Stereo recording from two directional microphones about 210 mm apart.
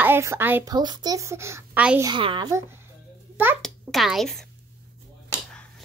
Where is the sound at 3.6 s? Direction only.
Centre (ahead or behind).